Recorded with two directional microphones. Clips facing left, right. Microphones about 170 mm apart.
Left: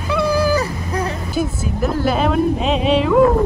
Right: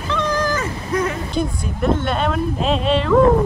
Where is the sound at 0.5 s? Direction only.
35° left (ahead or behind).